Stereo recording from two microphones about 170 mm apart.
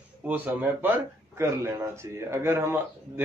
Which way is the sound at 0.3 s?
10° right (ahead or behind).